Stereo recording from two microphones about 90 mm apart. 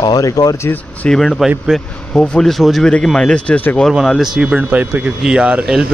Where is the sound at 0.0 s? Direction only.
50° left (ahead or behind).